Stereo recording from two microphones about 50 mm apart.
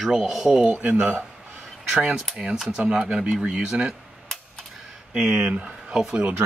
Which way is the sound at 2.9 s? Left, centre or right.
Centre.